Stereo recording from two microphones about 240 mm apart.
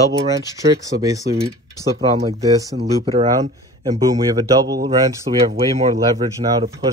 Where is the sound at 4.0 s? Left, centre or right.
Centre.